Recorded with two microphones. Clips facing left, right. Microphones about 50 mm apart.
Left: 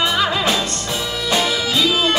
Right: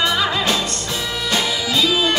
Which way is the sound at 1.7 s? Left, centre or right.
Centre.